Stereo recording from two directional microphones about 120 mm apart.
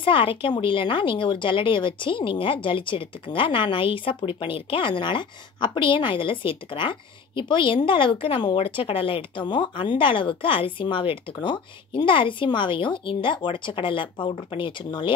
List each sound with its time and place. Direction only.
0.0 s speech: 45° left (ahead or behind)